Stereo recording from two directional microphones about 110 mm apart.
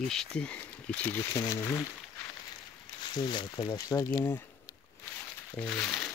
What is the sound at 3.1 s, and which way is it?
Speech, 40° left (ahead or behind).